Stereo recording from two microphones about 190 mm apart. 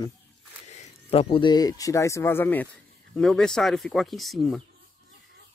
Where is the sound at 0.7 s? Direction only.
35° left (ahead or behind); by 4.6 s centre (ahead or behind).